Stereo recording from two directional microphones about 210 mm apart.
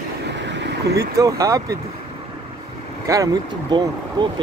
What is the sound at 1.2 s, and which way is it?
Speech, 15° right (ahead or behind).